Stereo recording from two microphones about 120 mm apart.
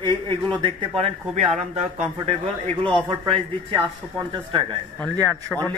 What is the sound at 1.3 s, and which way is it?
Speech, 80° right.